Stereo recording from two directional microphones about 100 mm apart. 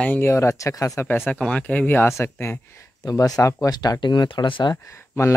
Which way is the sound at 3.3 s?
30° left (ahead or behind).